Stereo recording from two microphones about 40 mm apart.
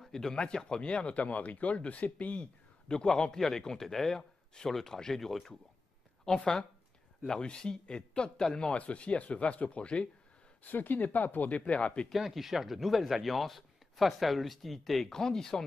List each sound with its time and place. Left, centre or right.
0.0 s speech: centre; by 2.5 s left
2.9 s a man's voice: left
8.7 s speech: left
10.6 s speech: left
12.1 s speech: centre
15.1 s a man's voice: centre